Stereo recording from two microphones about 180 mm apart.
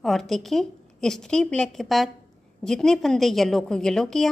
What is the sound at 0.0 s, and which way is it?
A woman's voice, centre (ahead or behind).